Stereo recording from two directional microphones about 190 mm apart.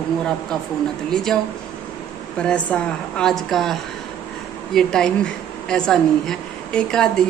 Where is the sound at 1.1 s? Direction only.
5° left (ahead or behind).